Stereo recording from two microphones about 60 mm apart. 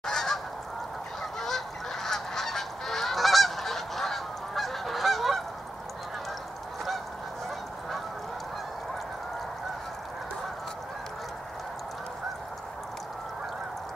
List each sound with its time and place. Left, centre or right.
0.0 s goose: centre
2.0 s goose: centre